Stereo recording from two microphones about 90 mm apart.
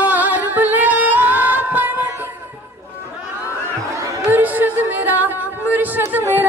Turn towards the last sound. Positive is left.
turn(degrees=-20)  # may be behind; listen again after turning